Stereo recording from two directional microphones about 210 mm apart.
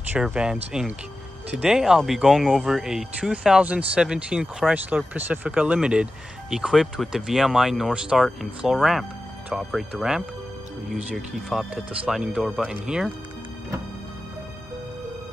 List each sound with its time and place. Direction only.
0.1 s speech: 5° right (ahead or behind)
1.6 s speech: 5° right (ahead or behind)